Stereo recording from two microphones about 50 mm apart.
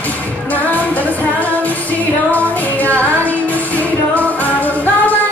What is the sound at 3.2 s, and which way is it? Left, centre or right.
Music, left.